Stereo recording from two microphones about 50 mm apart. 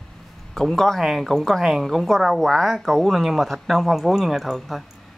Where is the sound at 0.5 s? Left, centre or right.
Centre.